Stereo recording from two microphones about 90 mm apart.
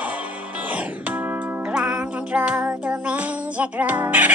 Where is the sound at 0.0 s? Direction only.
15° right (ahead or behind).